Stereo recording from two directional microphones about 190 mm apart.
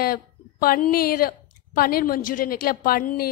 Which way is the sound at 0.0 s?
50° left (ahead or behind).